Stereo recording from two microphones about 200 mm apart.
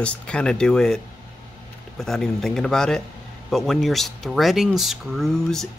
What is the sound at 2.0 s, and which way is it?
Speech, centre (ahead or behind).